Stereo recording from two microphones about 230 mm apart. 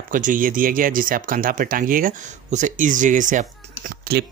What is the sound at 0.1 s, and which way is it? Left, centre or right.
Speech, right.